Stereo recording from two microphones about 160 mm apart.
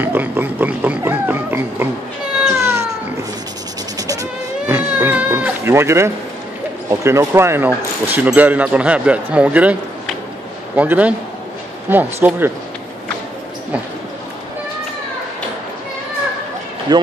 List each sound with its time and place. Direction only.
0.0 s a sound: 10° right (ahead or behind)
2.6 s cat: 15° right (ahead or behind)
4.1 s cat: 15° right (ahead or behind)
6.9 s speech: 20° right (ahead or behind)
16.9 s speech: 30° right (ahead or behind)